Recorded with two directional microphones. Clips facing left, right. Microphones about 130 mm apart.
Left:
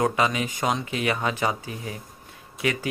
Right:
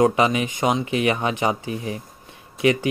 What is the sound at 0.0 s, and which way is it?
Speech, 25° right (ahead or behind).